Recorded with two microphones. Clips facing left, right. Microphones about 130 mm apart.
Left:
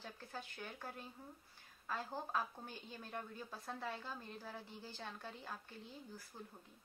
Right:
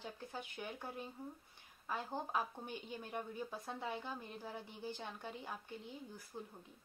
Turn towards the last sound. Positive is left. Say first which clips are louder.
# right 4 dB
turn(degrees=-15)  # may be behind; listen again after turning